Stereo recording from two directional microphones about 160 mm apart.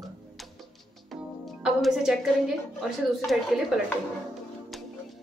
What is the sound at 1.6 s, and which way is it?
A woman's voice, 5° right (ahead or behind).